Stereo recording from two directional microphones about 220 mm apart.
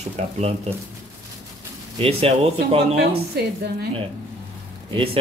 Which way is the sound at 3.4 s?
45° right (ahead or behind).